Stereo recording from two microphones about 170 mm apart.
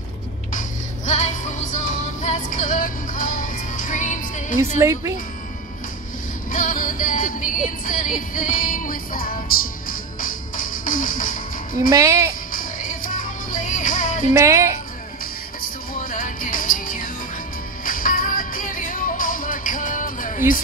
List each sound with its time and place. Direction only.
0.5 s music: 45° left (ahead or behind)
4.7 s speech: 15° right (ahead or behind)
6.5 s music: 50° left (ahead or behind)
11.9 s a woman's voice: 20° right (ahead or behind)
12.5 s music: 55° left (ahead or behind)
14.3 s speech: 15° right (ahead or behind)
15.9 s music: 55° left (ahead or behind)